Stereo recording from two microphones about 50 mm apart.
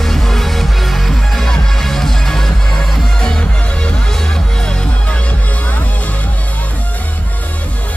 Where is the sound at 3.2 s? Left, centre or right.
Centre.